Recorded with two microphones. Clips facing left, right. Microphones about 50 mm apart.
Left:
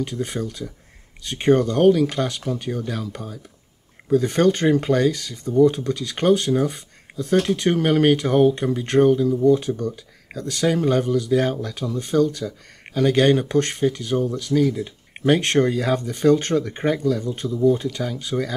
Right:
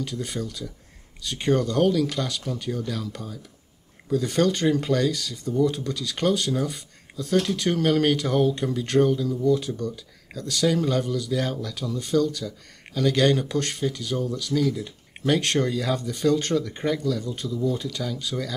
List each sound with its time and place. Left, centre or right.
0.0 s speech: left